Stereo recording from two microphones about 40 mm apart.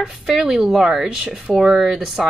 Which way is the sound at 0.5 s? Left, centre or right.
Centre.